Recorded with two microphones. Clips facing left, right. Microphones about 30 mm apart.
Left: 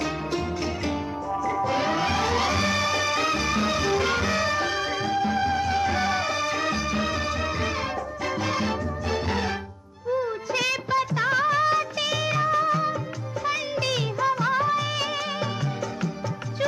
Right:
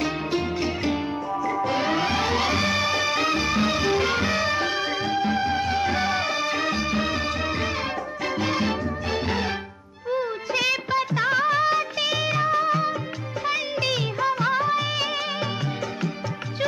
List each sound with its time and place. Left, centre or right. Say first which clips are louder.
1.8 s music: right 1 dB; centre
8.4 s music: right 3 dB; centre
10.5 s music of bollywood: right 2 dB; centre